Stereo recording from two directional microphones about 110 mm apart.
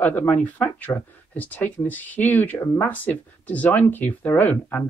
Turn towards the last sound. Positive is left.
turn(degrees=15)  # may be behind; listen again after turning